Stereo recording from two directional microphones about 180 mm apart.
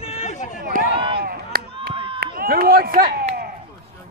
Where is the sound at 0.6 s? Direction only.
50° right (ahead or behind).